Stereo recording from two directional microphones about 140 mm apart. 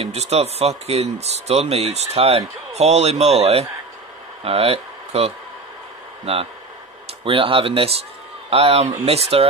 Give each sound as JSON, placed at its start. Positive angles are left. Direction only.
{"t": 0.0, "sound": "speech", "side_deg": -50}